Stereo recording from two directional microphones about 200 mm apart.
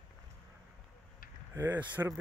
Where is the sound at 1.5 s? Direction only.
10° right (ahead or behind).